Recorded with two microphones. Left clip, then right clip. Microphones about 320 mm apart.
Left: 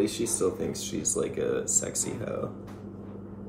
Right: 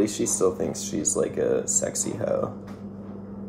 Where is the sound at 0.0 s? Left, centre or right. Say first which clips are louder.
Right 4 dB; centre.